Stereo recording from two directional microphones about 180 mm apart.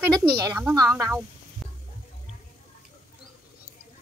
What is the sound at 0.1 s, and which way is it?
A woman's voice, 25° right (ahead or behind).